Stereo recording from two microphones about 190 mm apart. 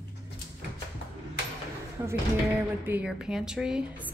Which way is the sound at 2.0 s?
20° right (ahead or behind).